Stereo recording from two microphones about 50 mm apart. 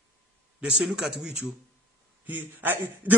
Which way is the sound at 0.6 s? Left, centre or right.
Right.